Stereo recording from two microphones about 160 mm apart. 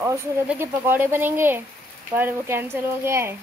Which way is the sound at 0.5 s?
15° right (ahead or behind).